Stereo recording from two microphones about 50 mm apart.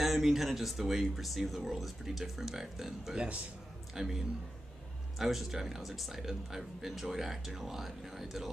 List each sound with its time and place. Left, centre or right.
0.0 s a man's voice: centre
5.2 s speech: centre